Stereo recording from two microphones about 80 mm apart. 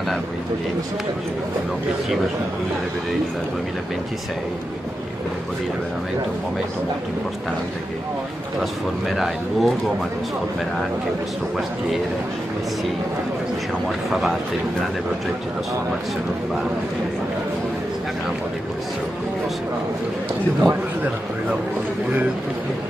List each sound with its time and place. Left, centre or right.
9.1 s speech: centre
20.6 s a man's voice: right